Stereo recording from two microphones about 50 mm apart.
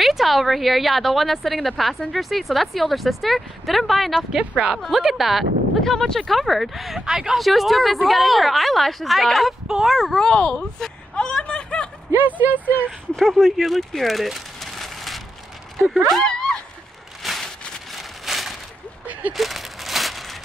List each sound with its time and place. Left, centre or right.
0.0 s a woman's voice: centre
4.4 s speech: centre
4.8 s a woman's voice: centre
5.8 s a woman's voice: centre
9.9 s a woman's voice: centre
10.2 s speech: centre
12.4 s speech: right
13.1 s speech: centre
13.5 s a sound: centre
16.1 s speech: centre
17.2 s a sound: centre